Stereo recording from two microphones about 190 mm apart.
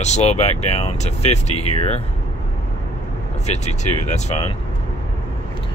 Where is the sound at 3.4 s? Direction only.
35° left (ahead or behind).